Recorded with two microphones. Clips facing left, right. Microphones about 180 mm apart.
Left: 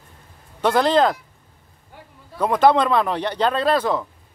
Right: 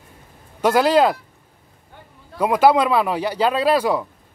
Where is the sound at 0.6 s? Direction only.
10° right (ahead or behind).